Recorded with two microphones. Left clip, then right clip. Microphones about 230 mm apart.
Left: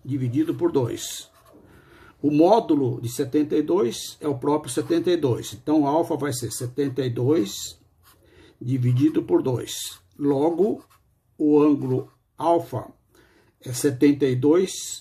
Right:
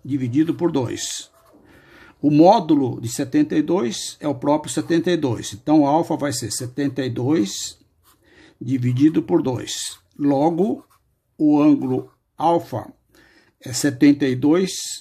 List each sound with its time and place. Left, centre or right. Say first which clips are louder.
0.1 s speech: right 4 dB; right